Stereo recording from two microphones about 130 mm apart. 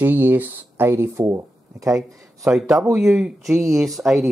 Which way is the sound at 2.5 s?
5° right (ahead or behind).